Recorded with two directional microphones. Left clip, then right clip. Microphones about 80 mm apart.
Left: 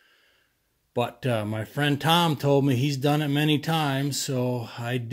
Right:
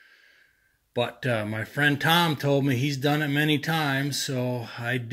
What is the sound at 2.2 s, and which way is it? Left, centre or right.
Speech, left.